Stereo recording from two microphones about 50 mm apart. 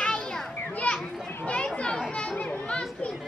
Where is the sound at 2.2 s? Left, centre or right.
Left.